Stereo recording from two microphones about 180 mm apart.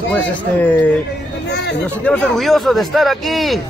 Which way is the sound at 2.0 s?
5° left (ahead or behind).